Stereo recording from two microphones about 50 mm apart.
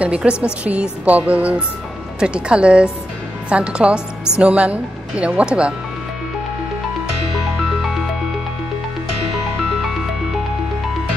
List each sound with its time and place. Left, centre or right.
0.0 s speech: right